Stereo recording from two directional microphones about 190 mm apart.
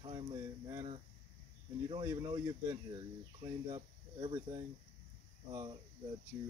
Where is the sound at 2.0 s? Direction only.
20° right (ahead or behind).